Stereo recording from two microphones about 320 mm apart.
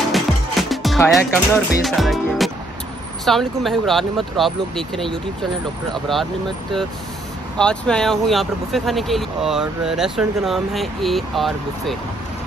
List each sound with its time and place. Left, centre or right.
0.1 s music: centre
3.3 s speech: centre
7.5 s speech: centre